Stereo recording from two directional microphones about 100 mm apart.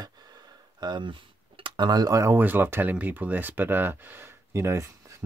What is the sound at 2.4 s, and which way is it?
Speech, 20° right (ahead or behind).